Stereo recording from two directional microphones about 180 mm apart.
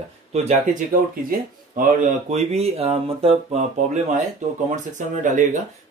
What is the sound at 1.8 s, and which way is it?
Speech, 50° right (ahead or behind).